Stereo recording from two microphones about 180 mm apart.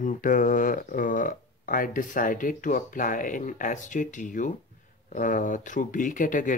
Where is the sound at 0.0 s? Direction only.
45° left (ahead or behind).